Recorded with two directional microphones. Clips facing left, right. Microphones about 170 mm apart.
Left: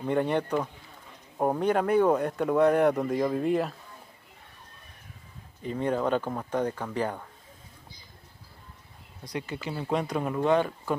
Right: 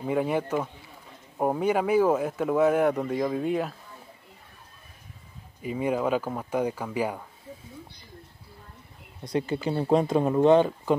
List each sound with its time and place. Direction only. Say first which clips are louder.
0.0 s speech: even; 5° right (ahead or behind)
5.6 s speech: right 1 dB; 10° right (ahead or behind)
9.2 s speech: right 7 dB; 30° right (ahead or behind)